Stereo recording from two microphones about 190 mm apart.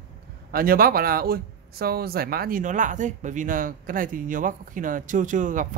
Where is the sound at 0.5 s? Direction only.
50° right (ahead or behind).